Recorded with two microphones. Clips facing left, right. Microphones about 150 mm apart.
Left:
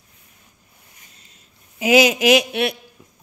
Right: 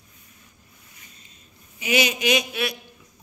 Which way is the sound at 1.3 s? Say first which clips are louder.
Right 2 dB; 85° left.